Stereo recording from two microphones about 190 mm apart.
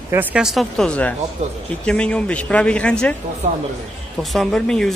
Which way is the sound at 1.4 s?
35° right (ahead or behind).